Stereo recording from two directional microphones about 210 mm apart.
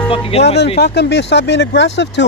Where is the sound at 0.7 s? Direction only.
50° left (ahead or behind).